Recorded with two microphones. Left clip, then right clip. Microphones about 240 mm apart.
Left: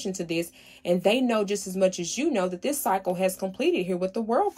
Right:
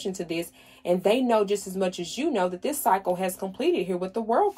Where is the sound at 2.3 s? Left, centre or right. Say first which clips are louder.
Right 1 dB; left.